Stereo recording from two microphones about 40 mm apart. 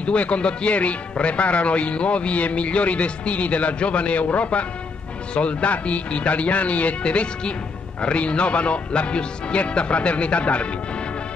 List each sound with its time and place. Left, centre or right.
0.0 s speech: left